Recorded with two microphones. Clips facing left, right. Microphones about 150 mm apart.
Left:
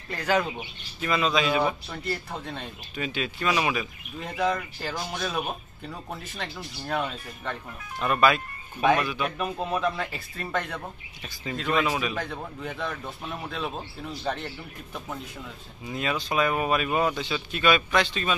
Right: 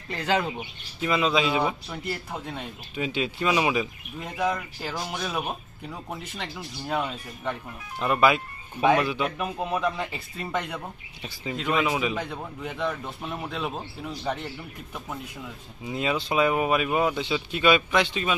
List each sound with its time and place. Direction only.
0.1 s a man's voice: 20° right (ahead or behind)
9.4 s a man's voice: 10° right (ahead or behind)
15.9 s a man's voice: 20° right (ahead or behind)